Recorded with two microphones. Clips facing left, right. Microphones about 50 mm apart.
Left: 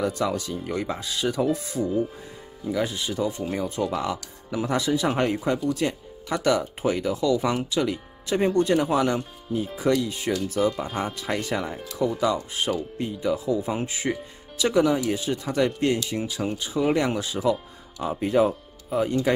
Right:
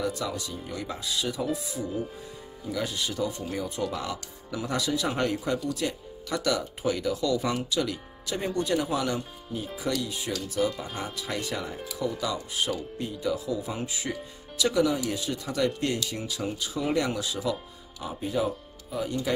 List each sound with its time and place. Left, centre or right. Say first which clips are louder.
0.0 s speech: left 5 dB; left
2.7 s speech: left 4 dB; left
18.0 s speech: left 7 dB; left